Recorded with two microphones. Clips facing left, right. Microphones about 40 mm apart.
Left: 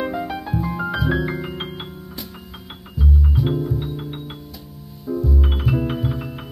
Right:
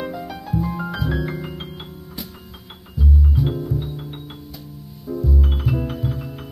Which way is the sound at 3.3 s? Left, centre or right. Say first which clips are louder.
Left 1 dB; centre.